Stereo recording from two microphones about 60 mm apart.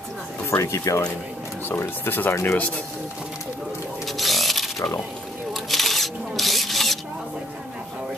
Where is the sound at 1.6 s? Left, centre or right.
Left.